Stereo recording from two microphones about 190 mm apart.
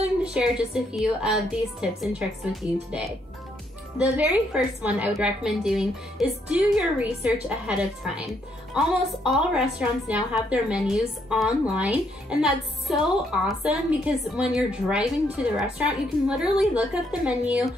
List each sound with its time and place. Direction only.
0.2 s a woman's voice: 5° right (ahead or behind)